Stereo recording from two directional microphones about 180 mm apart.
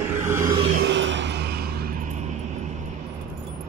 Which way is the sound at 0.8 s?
90° right.